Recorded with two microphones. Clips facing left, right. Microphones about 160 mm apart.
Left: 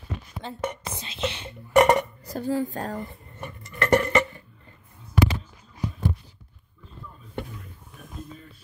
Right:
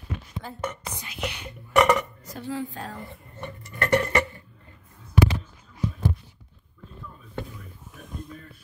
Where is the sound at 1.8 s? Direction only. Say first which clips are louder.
Left 2 dB; 40° left (ahead or behind).